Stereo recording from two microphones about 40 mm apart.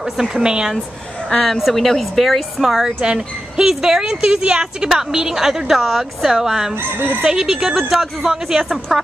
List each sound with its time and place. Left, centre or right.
0.0 s a woman's voice: centre
1.7 s a woman's voice: centre
6.8 s chicken: right
7.2 s a woman's voice: centre